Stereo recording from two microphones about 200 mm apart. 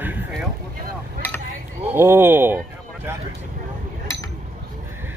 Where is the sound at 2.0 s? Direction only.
10° right (ahead or behind).